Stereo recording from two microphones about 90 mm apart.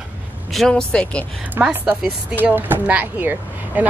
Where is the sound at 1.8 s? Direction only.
10° right (ahead or behind).